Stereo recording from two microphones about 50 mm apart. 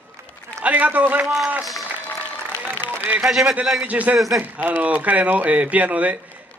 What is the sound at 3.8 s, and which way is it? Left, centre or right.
A man's voice, right.